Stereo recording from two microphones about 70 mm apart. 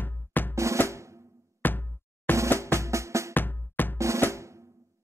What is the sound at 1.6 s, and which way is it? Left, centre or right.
Music, left.